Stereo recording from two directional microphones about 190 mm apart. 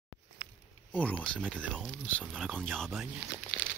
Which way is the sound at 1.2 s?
5° left (ahead or behind).